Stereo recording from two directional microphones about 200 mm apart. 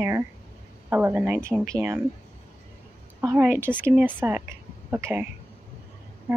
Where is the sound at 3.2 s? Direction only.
15° right (ahead or behind).